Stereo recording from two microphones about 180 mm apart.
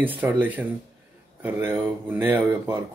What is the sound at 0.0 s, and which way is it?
Speech, 10° right (ahead or behind).